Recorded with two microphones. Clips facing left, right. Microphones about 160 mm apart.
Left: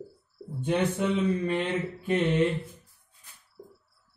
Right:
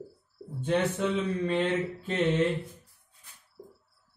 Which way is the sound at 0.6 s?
15° left (ahead or behind).